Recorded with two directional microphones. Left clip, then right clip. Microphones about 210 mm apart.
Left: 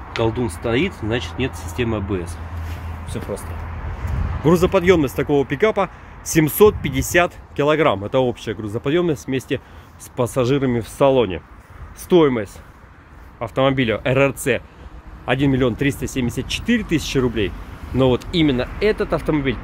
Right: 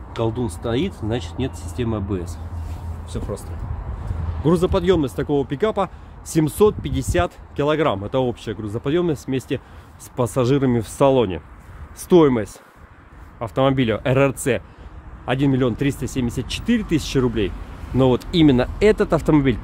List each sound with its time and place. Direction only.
0.2 s speech: 5° left (ahead or behind)
4.5 s speech: 5° left (ahead or behind); by 12.4 s 25° right (ahead or behind)
13.4 s speech: 15° right (ahead or behind)
15.2 s speech: centre (ahead or behind); by 19.6 s 35° right (ahead or behind)